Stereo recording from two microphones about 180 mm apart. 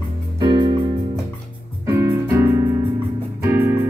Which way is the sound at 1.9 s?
15° right (ahead or behind).